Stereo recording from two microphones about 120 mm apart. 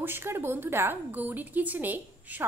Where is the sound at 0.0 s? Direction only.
20° right (ahead or behind).